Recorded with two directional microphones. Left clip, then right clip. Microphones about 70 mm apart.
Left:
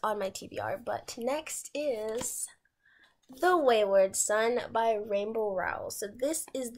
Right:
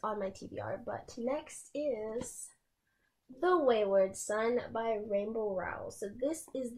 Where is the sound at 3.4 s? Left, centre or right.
Centre.